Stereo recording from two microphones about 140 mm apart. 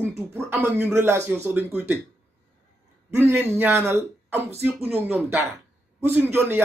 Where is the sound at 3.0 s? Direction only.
20° right (ahead or behind).